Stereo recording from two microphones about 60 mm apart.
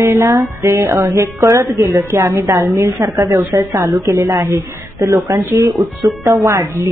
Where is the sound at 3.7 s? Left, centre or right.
Right.